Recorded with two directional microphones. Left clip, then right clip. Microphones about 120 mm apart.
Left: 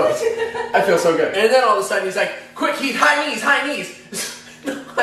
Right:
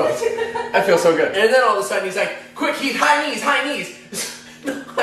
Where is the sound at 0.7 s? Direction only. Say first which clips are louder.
Right 1 dB; 15° right (ahead or behind).